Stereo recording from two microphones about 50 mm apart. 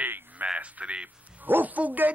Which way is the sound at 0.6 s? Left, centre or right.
Right.